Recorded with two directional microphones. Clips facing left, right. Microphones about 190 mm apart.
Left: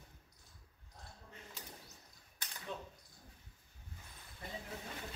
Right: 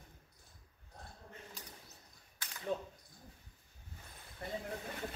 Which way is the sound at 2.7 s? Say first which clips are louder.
Right 8 dB; 45° right (ahead or behind).